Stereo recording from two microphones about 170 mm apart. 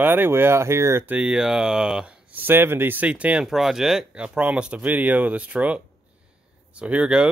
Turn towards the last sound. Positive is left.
turn(degrees=-5)  # may be behind; listen again after turning